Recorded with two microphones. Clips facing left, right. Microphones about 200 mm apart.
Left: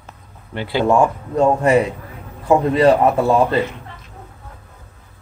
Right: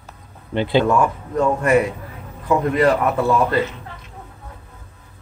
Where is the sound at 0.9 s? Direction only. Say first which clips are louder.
Left 3 dB; 25° left (ahead or behind).